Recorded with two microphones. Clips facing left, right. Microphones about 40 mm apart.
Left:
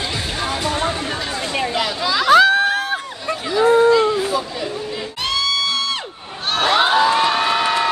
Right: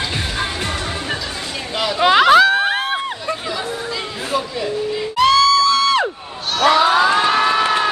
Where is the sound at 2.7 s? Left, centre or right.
Right.